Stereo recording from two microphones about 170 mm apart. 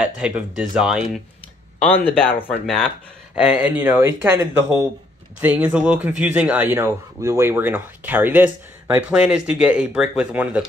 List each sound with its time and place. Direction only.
0.0 s speech: 5° right (ahead or behind)
1.9 s speech: 35° left (ahead or behind)
2.6 s speech: 5° left (ahead or behind)
3.3 s speech: 5° right (ahead or behind)